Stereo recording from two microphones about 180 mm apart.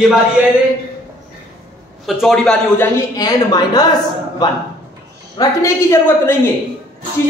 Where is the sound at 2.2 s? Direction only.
5° left (ahead or behind).